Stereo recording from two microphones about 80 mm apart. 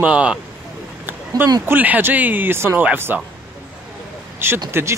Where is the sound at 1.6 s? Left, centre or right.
Right.